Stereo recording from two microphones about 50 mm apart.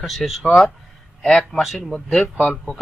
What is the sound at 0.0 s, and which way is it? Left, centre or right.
Speech, centre.